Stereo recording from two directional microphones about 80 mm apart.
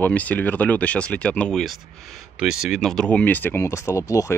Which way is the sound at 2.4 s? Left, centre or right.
Centre.